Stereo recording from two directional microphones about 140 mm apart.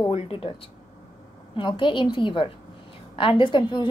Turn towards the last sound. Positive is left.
turn(degrees=35)  # may be behind; listen again after turning